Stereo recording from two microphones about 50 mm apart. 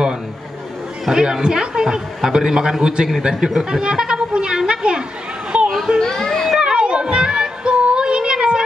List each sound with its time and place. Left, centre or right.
1.0 s a man's voice: centre
3.1 s a sound: centre; by 5.7 s right
5.9 s children playing: centre
6.6 s music: centre